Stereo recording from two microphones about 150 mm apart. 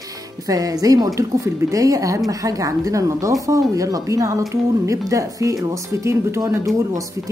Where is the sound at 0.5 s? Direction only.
25° right (ahead or behind).